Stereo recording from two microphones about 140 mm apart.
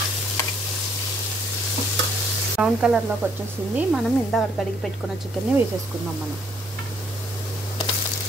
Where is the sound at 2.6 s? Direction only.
5° right (ahead or behind).